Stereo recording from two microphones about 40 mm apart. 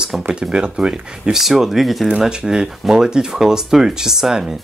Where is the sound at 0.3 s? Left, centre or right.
Right.